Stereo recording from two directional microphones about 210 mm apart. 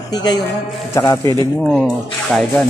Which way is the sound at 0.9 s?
15° left (ahead or behind).